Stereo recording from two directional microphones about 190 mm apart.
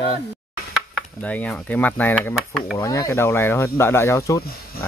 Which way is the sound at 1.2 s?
5° left (ahead or behind).